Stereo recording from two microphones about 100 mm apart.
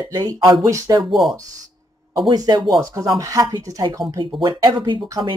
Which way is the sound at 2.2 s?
40° right (ahead or behind).